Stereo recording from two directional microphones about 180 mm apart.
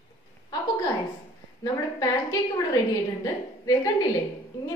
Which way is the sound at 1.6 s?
20° left (ahead or behind).